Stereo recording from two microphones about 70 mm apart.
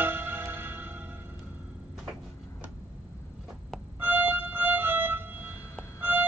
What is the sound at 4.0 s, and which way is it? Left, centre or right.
Music, right.